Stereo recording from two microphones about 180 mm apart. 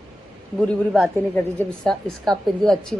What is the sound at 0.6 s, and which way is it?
Mantra, centre (ahead or behind).